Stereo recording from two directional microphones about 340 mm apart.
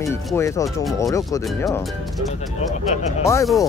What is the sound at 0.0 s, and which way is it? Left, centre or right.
Speech, centre.